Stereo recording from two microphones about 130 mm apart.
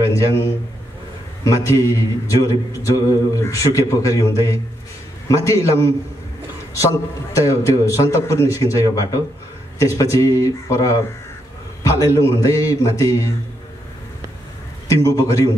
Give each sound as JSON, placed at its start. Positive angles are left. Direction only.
{"t": 0.1, "sound": "a man's voice", "side_deg": 25}
{"t": 14.9, "sound": "speech", "side_deg": 25}